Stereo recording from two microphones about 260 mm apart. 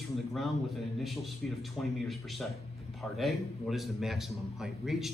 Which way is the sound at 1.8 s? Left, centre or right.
Centre.